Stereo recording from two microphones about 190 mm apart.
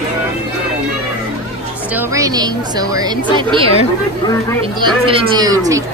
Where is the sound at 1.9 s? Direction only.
15° right (ahead or behind).